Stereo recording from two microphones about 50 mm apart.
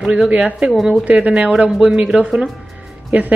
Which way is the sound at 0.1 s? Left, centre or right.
Right.